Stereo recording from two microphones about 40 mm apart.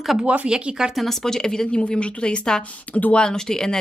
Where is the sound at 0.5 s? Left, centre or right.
Centre.